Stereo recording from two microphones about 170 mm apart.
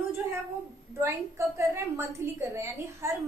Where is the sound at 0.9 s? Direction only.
15° right (ahead or behind).